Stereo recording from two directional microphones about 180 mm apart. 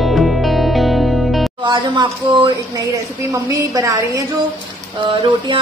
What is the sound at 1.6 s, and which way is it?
Speech, 25° right (ahead or behind).